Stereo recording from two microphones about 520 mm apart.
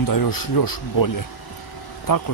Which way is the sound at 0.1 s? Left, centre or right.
Left.